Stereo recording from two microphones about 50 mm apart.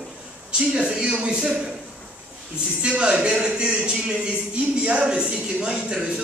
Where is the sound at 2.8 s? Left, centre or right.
Centre.